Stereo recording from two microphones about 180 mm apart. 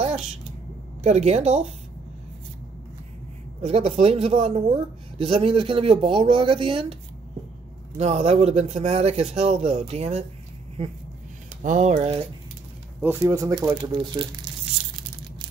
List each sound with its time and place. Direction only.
0.0 s vehicle: 40° right (ahead or behind)
1.0 s a man's voice: 35° right (ahead or behind)
3.6 s a man's voice: 35° right (ahead or behind)
8.0 s a man's voice: 35° right (ahead or behind)
11.6 s a man's voice: 45° right (ahead or behind)
13.0 s speech: 10° right (ahead or behind); by 14.2 s 30° right (ahead or behind)